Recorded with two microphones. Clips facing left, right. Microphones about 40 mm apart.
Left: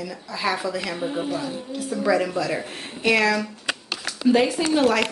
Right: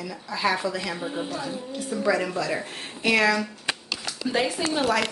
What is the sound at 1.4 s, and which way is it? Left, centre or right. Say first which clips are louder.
Speech: left 2 dB; centre.